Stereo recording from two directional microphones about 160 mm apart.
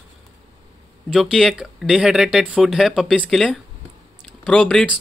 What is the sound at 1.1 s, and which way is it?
Speech, centre (ahead or behind).